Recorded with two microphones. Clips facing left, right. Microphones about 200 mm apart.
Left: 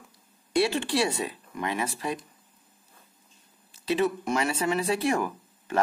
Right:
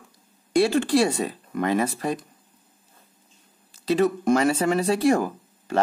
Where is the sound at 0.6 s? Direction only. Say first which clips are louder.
Right 6 dB; 45° right (ahead or behind).